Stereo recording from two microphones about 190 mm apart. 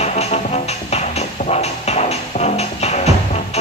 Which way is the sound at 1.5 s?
35° left (ahead or behind).